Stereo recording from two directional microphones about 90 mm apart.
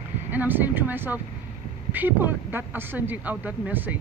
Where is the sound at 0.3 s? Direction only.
20° right (ahead or behind).